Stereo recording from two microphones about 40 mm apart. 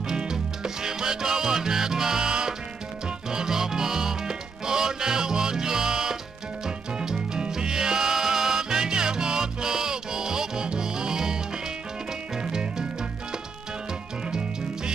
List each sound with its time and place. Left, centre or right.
0.1 s music: centre
12.4 s music: centre